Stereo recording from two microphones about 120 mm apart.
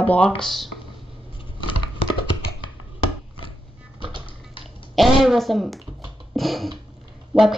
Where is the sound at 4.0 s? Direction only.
40° right (ahead or behind).